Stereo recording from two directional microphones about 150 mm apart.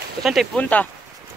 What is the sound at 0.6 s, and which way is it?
Speech, 10° left (ahead or behind).